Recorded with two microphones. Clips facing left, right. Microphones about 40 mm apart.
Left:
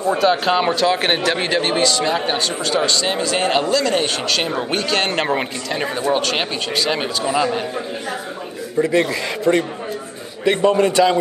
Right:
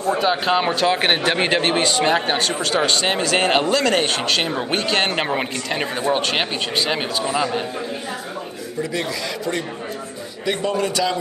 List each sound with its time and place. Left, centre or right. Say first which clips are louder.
0.2 s speech: left 3 dB; centre
0.9 s a man's voice: even; right
5.8 s speech: left 2 dB; centre
7.2 s speech: left 4 dB; centre
8.8 s a man's voice: left 6 dB; left